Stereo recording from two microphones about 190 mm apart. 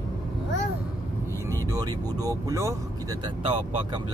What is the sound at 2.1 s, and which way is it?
Speech, 20° right (ahead or behind).